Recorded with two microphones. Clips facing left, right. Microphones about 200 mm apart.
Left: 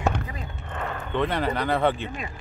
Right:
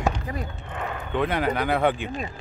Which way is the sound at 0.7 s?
5° right (ahead or behind).